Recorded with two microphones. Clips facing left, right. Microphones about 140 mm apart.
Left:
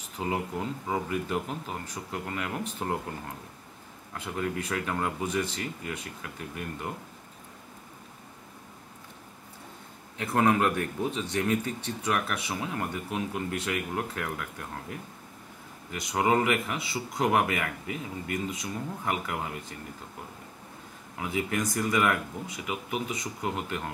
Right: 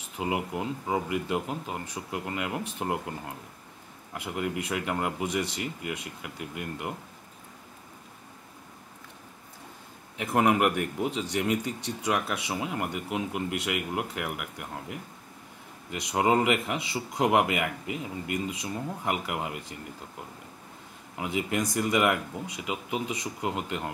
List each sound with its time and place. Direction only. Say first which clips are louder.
0.2 s speech: right 1 dB; 15° right (ahead or behind)
4.1 s speech: even; 15° right (ahead or behind)
10.1 s speech: right 1 dB; 15° right (ahead or behind)
21.2 s speech: right 1 dB; 20° right (ahead or behind)